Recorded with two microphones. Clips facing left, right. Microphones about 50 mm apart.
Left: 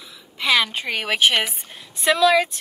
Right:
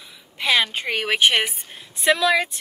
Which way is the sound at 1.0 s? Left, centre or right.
Centre.